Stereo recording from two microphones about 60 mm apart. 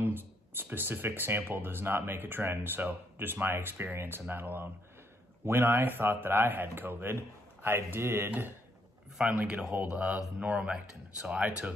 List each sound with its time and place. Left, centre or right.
0.0 s speech: right
9.3 s speech: right
9.8 s speech: centre